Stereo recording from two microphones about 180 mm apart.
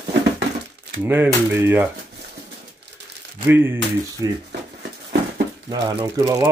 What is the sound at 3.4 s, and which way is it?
Speech, 10° right (ahead or behind).